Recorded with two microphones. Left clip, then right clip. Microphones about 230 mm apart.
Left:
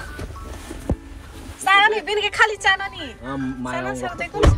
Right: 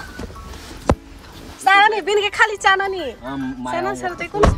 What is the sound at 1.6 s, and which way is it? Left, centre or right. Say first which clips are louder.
Speech: right 2 dB; right.